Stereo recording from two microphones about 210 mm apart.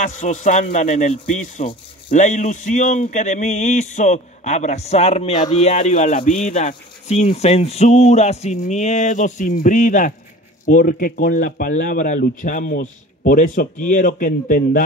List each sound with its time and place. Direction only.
0.0 s speech: 35° left (ahead or behind)